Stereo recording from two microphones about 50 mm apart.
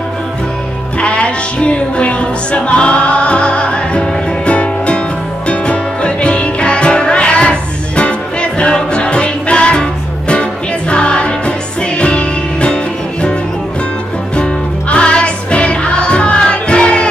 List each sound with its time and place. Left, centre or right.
1.0 s music: left
14.3 s music: left